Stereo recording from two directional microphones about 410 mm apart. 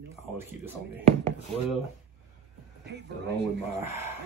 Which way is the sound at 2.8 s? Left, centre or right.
Right.